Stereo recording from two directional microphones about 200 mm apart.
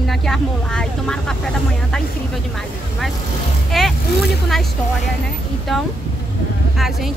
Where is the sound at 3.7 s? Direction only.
Centre (ahead or behind).